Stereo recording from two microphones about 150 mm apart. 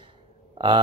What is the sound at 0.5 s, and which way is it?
Speech, 30° right (ahead or behind).